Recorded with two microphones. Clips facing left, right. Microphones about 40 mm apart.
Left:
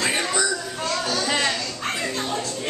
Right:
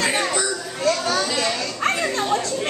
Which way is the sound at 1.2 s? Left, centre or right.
Left.